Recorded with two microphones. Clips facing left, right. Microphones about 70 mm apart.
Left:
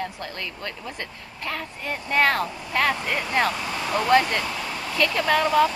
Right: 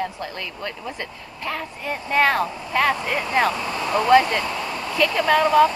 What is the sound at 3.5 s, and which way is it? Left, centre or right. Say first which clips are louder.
Speech: right 3 dB; right.